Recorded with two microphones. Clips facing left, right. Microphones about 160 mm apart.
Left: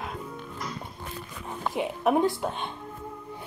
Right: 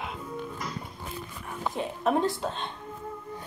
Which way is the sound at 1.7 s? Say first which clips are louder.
Left 3 dB; 15° left (ahead or behind).